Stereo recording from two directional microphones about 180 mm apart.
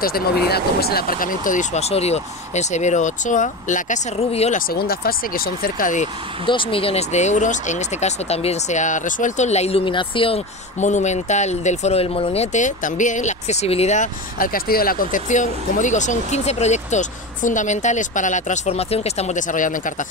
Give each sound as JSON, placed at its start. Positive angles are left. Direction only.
{"t": 0.5, "sound": "speech", "side_deg": 60}
{"t": 4.6, "sound": "speech", "side_deg": 55}
{"t": 6.4, "sound": "speech", "side_deg": 25}